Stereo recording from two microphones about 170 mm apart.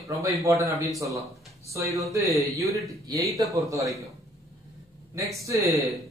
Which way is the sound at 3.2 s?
Centre (ahead or behind).